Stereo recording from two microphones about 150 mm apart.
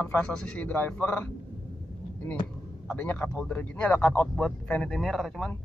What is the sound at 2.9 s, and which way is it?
A man's voice, 15° left (ahead or behind).